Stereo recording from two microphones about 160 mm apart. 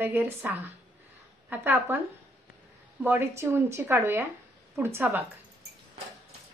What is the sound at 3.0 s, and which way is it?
Speech, 15° right (ahead or behind).